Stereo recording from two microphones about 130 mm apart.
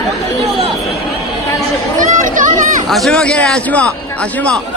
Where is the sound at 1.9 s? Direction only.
85° right.